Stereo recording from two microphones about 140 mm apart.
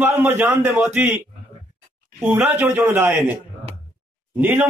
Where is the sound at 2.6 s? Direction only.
15° right (ahead or behind).